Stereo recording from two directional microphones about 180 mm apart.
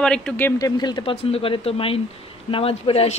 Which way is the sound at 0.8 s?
25° left (ahead or behind).